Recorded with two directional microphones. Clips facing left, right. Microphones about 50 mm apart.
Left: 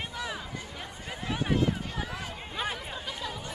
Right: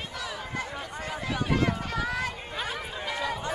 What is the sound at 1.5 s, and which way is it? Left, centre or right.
Run, right.